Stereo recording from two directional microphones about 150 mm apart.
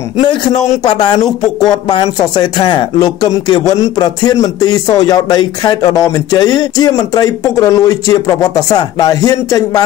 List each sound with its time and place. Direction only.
0.2 s speech: 30° left (ahead or behind)